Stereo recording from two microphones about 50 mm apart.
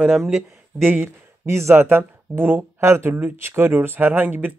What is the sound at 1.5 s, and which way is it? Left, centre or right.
Speech, right.